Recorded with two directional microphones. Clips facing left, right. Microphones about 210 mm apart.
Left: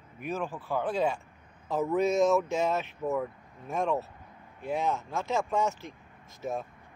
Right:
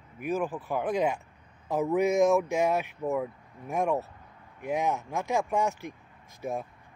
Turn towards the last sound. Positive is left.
turn(degrees=-15)  # may be behind; listen again after turning